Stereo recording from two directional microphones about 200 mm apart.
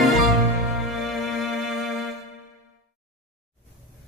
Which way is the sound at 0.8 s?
Centre (ahead or behind).